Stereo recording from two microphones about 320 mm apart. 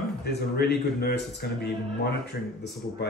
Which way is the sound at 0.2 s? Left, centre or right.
Left.